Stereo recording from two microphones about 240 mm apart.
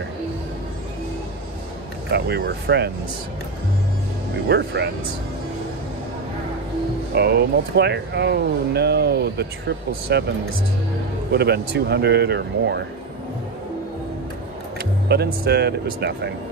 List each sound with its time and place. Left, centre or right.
2.1 s speech: right
4.5 s speech: right
7.2 s speech: right
11.3 s speech: right
15.1 s speech: right